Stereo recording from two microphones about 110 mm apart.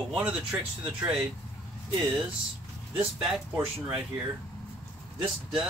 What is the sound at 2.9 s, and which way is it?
Speech, 10° right (ahead or behind).